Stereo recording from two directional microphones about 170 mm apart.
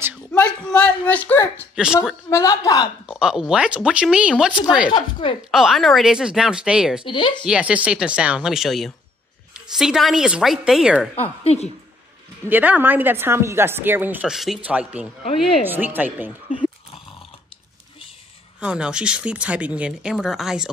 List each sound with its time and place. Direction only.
0.3 s a sound: 5° left (ahead or behind)
2.2 s a woman's voice: 20° left (ahead or behind)
3.1 s speech: 5° right (ahead or behind)
7.1 s a woman's voice: 30° left (ahead or behind)
7.4 s speech: 5° right (ahead or behind)
11.1 s a woman's voice: 40° left (ahead or behind)
12.4 s a woman's voice: 10° right (ahead or behind)
18.6 s speech: 5° right (ahead or behind)